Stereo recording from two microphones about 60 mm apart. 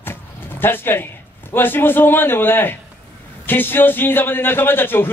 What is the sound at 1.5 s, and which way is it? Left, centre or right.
A man's voice, left.